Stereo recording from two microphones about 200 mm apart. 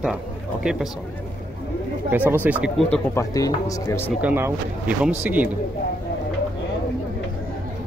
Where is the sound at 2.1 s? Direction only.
10° right (ahead or behind).